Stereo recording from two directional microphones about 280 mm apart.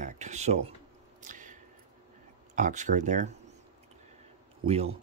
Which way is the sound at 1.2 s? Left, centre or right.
Right.